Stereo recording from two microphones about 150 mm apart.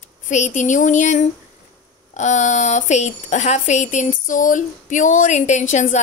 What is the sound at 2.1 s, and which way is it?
Speech, 50° left (ahead or behind).